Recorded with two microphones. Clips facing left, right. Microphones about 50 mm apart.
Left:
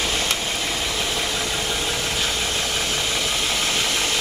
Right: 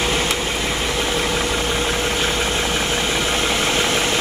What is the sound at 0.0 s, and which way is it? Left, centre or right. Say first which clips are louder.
Vehicle: right 4 dB; right.